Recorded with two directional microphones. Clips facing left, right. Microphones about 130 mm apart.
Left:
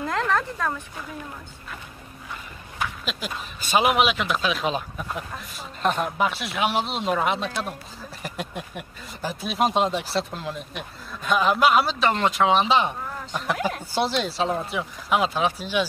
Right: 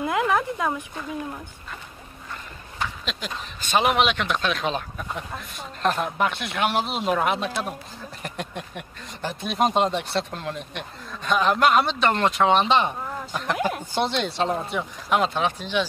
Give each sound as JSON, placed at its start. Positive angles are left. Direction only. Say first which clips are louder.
{"t": 0.0, "sound": "a sound", "louder": "right 2 dB", "side_deg": -10}
{"t": 2.8, "sound": "speech", "louder": "left 1 dB", "side_deg": 5}
{"t": 13.6, "sound": "speech", "louder": "right 2 dB", "side_deg": -15}
{"t": 13.9, "sound": "speech", "louder": "left 1 dB", "side_deg": 5}